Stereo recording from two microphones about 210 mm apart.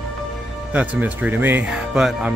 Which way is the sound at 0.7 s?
5° right (ahead or behind).